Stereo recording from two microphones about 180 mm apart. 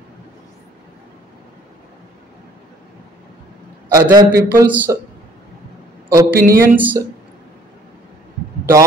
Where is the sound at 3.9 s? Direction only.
15° right (ahead or behind).